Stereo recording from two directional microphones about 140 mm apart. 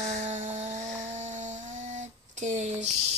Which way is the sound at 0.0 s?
55° right (ahead or behind).